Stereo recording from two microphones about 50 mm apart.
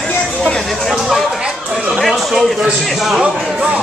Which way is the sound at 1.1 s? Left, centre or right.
Centre.